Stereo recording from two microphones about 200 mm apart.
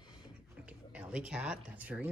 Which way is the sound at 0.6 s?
5° right (ahead or behind).